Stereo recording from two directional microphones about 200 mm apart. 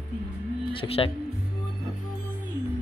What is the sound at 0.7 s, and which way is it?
Speech, 25° left (ahead or behind).